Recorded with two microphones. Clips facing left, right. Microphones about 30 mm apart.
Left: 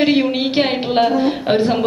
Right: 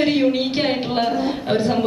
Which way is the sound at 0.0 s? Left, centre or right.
Left.